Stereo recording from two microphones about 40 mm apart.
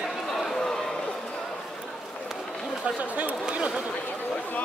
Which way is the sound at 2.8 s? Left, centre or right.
Right.